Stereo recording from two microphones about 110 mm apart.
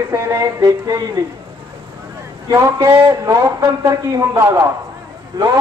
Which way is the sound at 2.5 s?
30° right (ahead or behind).